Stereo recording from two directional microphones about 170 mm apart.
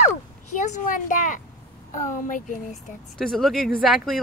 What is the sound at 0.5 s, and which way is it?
Speech, 45° left (ahead or behind).